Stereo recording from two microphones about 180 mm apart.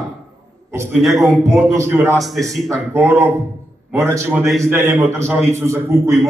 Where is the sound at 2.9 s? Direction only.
10° right (ahead or behind).